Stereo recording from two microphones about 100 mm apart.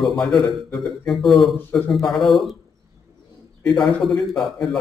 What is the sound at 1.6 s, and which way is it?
Speech, 15° left (ahead or behind).